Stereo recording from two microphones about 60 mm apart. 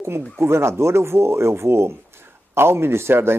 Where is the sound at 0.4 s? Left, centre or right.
Right.